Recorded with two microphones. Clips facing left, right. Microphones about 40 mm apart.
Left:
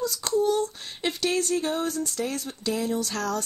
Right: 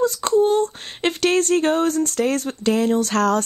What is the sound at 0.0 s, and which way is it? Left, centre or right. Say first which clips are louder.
Speech: right 7 dB; right.